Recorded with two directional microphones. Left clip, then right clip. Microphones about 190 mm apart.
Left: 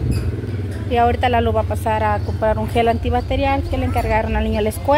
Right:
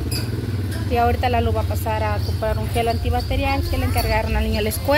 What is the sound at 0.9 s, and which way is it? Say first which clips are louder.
Speech: left 3 dB; 20° left (ahead or behind).